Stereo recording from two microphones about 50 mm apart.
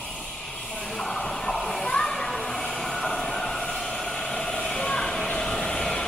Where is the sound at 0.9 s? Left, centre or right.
Centre.